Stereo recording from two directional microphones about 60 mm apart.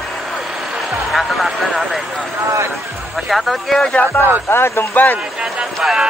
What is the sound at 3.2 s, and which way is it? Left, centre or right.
Speech, centre.